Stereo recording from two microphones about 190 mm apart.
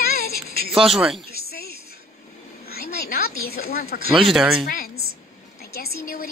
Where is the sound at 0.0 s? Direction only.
55° left (ahead or behind).